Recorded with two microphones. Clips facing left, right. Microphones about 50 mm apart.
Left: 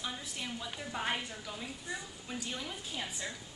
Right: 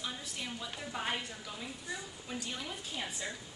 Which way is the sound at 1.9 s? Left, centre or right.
Left.